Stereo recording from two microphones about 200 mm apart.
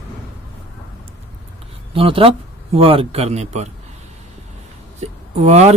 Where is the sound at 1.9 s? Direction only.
25° right (ahead or behind).